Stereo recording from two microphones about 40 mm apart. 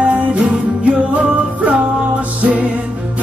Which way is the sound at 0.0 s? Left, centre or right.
Right.